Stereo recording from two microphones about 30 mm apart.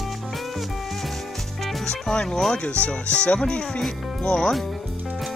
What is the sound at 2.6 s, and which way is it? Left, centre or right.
Speech, left.